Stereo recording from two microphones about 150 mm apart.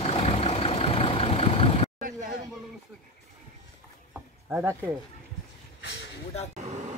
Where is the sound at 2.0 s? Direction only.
65° right (ahead or behind).